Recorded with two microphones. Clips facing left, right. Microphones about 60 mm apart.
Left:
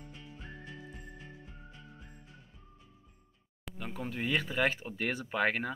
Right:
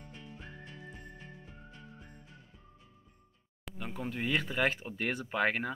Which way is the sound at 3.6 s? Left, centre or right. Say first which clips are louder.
Right 1 dB; centre.